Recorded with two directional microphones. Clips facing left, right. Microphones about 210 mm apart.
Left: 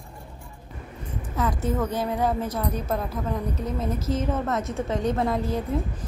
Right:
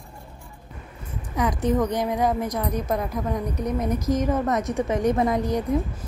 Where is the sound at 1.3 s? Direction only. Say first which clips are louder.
Right 4 dB; 15° right (ahead or behind).